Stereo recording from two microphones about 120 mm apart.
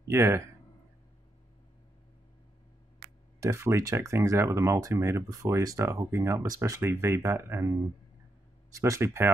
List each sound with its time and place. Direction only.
0.1 s speech: 20° right (ahead or behind)
3.3 s speech: 25° right (ahead or behind)
8.7 s speech: 25° right (ahead or behind)